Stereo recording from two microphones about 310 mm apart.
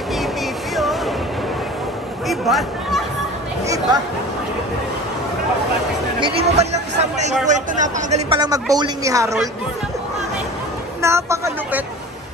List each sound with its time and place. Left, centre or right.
0.7 s music: centre
2.2 s a sound: centre
3.6 s a woman's voice: centre
6.1 s a woman's voice: centre
11.0 s speech: centre